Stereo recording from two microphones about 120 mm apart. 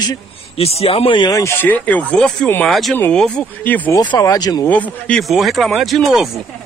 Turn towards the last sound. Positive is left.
turn(degrees=0)  # may be behind; listen again after turning